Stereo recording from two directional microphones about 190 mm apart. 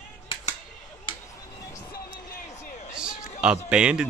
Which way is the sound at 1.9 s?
45° left (ahead or behind).